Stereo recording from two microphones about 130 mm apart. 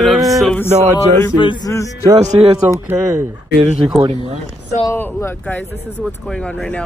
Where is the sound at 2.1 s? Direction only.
55° right (ahead or behind).